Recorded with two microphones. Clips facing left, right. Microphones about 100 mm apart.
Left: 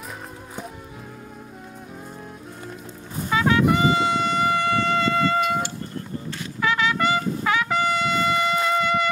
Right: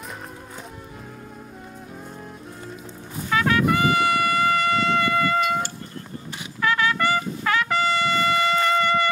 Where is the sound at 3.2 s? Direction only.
20° left (ahead or behind).